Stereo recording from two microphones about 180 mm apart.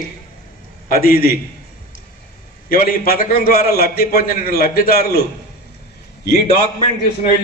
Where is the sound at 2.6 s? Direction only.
55° left (ahead or behind).